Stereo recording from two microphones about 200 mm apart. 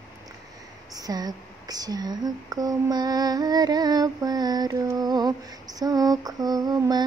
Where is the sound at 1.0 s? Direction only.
20° right (ahead or behind).